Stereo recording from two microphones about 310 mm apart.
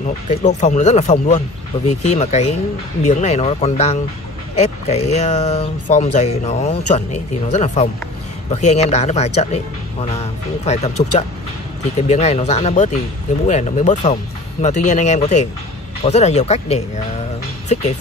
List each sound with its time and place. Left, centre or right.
0.0 s speech: left